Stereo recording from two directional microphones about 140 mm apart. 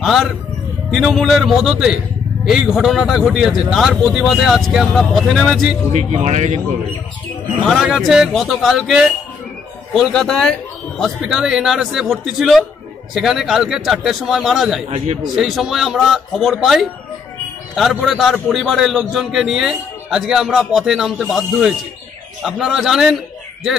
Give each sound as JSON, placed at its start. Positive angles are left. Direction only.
{"t": 0.0, "sound": "a man's voice", "side_deg": 0}
{"t": 5.9, "sound": "speech", "side_deg": -55}
{"t": 7.6, "sound": "a man's voice", "side_deg": 0}